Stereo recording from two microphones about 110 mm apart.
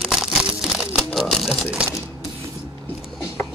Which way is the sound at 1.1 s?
Centre (ahead or behind).